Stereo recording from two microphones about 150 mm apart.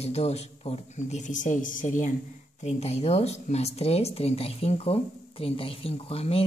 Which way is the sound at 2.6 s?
45° left (ahead or behind).